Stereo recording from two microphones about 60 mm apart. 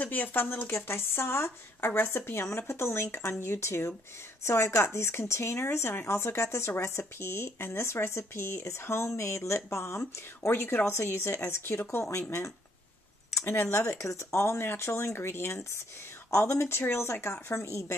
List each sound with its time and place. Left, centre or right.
0.0 s speech: left
0.7 s speech: left
13.3 s a sound: centre
13.7 s speech: left